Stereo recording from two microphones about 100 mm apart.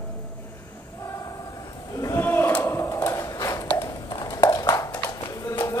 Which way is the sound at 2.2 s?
20° left (ahead or behind).